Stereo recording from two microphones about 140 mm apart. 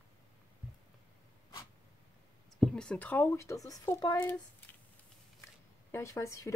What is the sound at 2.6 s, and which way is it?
Speech, 5° left (ahead or behind).